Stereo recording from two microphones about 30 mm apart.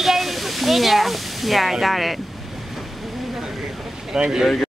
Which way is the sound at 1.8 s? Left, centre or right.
Centre.